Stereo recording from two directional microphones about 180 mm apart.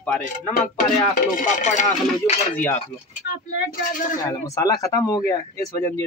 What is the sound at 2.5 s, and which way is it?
Cutlery, 10° left (ahead or behind).